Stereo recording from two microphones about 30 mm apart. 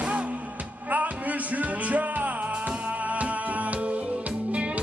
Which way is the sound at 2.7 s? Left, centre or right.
Right.